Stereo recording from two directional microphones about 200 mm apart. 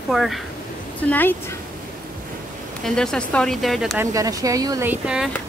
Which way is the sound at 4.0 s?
15° right (ahead or behind).